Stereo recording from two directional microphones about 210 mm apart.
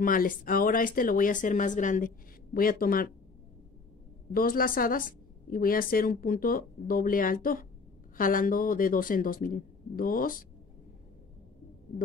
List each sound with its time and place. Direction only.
0.0 s speech: 40° left (ahead or behind)
4.3 s a woman's voice: 45° left (ahead or behind)